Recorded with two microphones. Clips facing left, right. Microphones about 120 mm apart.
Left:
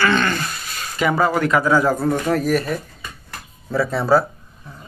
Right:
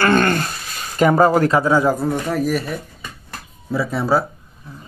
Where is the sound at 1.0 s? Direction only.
40° right (ahead or behind); by 2.1 s 15° right (ahead or behind).